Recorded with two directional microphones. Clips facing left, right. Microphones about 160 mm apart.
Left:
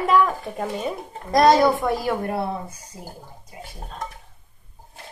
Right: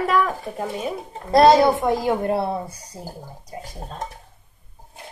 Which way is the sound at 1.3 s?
25° right (ahead or behind).